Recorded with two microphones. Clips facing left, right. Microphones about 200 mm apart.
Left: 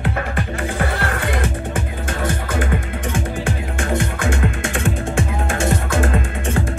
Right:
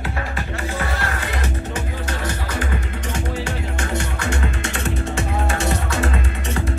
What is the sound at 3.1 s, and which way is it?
Music, 55° left (ahead or behind).